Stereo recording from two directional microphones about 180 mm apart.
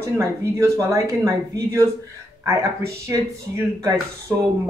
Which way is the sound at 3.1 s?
20° right (ahead or behind).